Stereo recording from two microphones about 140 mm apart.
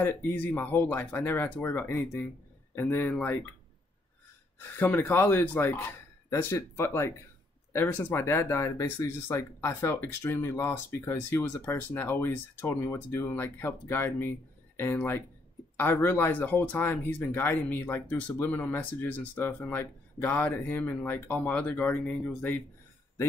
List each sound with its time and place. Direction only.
0.0 s speech: 15° left (ahead or behind)
4.7 s speech: 15° left (ahead or behind)